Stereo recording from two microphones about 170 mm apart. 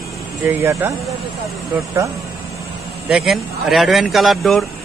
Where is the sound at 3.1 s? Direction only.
Centre (ahead or behind).